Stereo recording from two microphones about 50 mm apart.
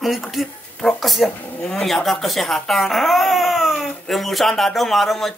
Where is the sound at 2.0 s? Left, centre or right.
Centre.